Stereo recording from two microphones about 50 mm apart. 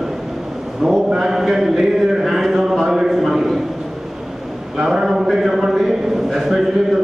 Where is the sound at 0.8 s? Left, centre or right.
Centre.